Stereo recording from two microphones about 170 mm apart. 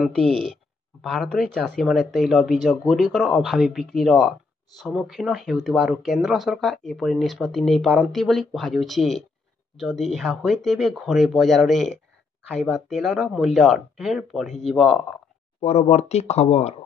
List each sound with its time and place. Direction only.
0.0 s speech: centre (ahead or behind)
15.6 s speech: 40° left (ahead or behind)